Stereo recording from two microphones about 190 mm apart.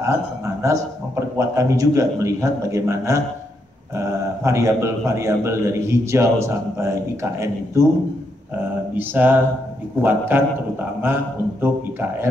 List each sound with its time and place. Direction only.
0.0 s a man's voice: 15° right (ahead or behind)
8.9 s a man's voice: 10° right (ahead or behind)